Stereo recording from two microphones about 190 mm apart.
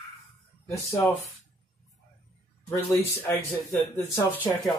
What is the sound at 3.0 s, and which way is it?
Speech, 10° left (ahead or behind).